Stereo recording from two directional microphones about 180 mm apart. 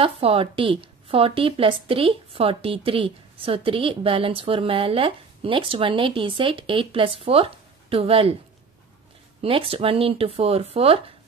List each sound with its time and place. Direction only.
0.0 s speech: 30° right (ahead or behind)
9.4 s speech: 30° right (ahead or behind)